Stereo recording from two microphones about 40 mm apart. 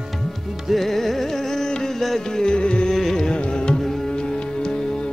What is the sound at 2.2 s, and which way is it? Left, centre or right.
Music, centre.